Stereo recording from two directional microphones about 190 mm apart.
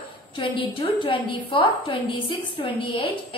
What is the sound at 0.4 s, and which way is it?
A woman's voice, 25° left (ahead or behind).